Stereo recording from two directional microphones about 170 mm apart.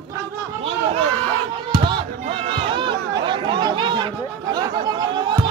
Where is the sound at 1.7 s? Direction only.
25° right (ahead or behind).